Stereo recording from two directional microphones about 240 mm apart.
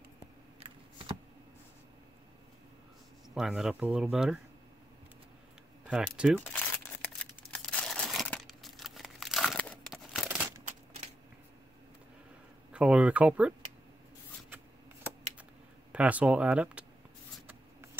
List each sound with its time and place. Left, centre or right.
0.6 s a sound: right
3.3 s speech: centre
5.9 s speech: centre
6.4 s crumpling: centre
12.7 s speech: centre
15.9 s speech: centre